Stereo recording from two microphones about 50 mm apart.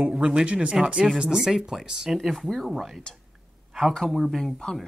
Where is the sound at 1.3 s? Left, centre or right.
Centre.